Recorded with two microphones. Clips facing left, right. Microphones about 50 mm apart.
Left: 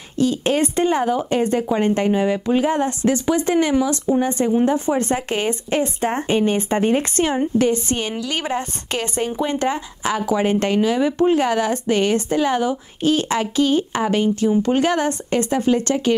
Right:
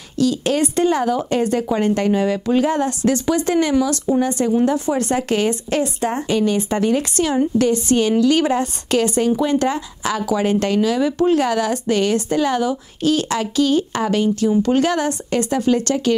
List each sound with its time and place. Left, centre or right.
0.2 s speech: left
6.0 s a woman's voice: left